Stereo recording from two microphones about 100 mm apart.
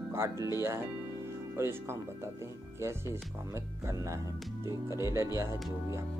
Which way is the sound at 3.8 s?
30° right (ahead or behind).